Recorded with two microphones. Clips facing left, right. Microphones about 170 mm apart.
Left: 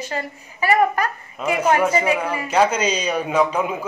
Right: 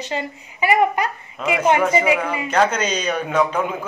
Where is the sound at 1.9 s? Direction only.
10° right (ahead or behind).